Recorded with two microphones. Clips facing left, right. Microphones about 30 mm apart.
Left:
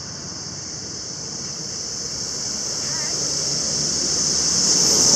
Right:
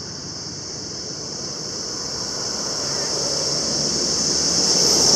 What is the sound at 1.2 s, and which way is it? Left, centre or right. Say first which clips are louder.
Waves: right 1 dB; centre.